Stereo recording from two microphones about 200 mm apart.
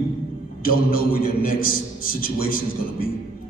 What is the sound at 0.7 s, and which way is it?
A man's voice, 45° left (ahead or behind).